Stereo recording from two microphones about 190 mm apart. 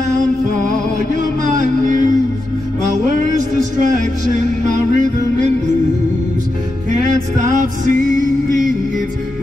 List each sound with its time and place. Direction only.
1.6 s music: 45° right (ahead or behind)
3.8 s music: 40° right (ahead or behind)
6.9 s music: 40° right (ahead or behind)